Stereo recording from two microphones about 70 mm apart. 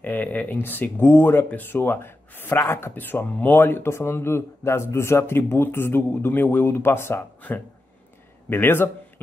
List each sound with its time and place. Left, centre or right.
0.0 s speech: left
8.5 s speech: left